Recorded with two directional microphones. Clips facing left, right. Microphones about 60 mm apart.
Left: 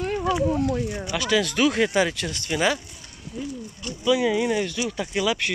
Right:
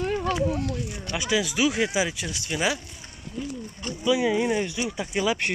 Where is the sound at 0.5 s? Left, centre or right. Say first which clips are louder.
Left 5 dB; left.